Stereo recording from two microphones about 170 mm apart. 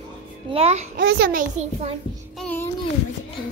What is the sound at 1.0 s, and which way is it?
Speech, 75° right (ahead or behind).